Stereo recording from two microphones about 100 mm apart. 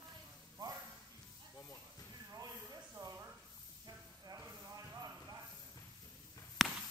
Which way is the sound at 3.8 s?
40° right (ahead or behind).